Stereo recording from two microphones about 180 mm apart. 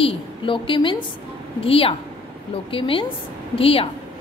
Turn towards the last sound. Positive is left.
turn(degrees=30)  # may be behind; listen again after turning